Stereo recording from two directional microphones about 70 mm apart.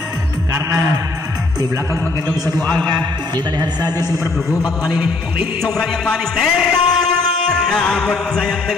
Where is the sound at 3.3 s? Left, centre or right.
Right.